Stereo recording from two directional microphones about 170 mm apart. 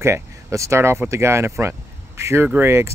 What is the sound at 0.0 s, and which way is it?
Speech, 15° right (ahead or behind).